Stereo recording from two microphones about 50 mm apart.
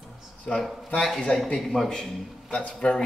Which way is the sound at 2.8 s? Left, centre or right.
Left.